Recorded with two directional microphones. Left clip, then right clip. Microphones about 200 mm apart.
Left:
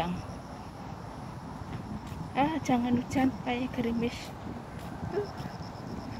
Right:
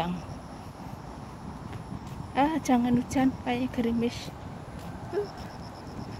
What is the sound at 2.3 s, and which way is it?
Speech, 25° right (ahead or behind).